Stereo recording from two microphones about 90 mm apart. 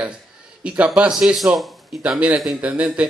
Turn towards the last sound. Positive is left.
turn(degrees=-15)  # may be behind; listen again after turning